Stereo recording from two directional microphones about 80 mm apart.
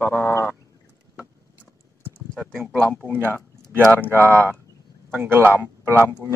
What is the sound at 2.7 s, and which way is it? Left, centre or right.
Speech, centre.